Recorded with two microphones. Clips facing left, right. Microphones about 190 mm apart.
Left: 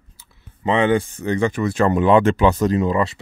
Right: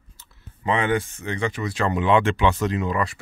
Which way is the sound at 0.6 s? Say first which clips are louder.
Left 5 dB; 25° left (ahead or behind).